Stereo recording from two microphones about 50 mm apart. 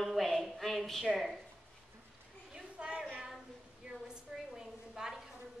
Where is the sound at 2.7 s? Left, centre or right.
Centre.